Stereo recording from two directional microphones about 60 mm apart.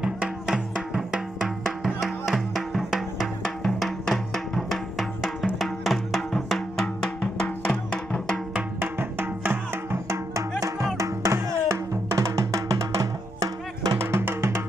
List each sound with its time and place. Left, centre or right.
0.0 s music: centre
3.6 s music: centre
7.3 s music: left
8.7 s music: right
10.0 s music: right
13.9 s music: right